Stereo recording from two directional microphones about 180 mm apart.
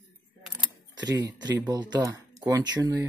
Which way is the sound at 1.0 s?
20° right (ahead or behind).